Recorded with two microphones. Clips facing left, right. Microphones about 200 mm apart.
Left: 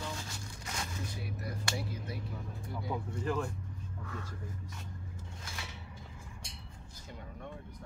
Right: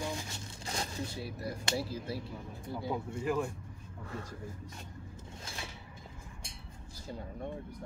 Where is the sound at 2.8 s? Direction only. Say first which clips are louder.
Right 2 dB; 25° right (ahead or behind).